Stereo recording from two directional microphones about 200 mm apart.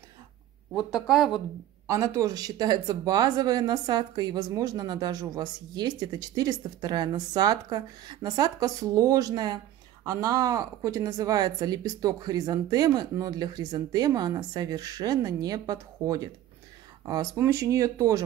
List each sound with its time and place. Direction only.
0.7 s speech: centre (ahead or behind)
1.9 s speech: 15° right (ahead or behind)